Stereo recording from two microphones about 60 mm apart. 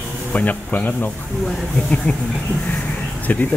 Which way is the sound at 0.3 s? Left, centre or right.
Left.